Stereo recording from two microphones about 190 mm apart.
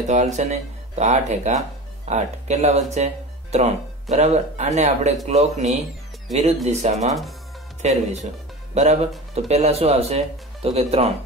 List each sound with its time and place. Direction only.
0.1 s speech: 40° right (ahead or behind)